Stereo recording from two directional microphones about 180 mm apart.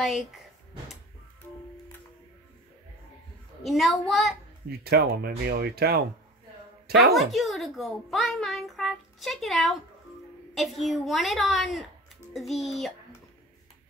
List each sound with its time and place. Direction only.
3.6 s a child's voice: centre (ahead or behind)
4.6 s speech: 60° right (ahead or behind)
7.2 s a child's voice: centre (ahead or behind)